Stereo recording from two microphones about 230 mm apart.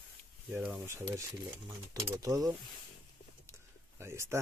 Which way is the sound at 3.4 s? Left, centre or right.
Centre.